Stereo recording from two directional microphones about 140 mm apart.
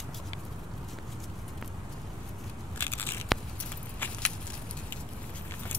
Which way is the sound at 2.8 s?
15° left (ahead or behind).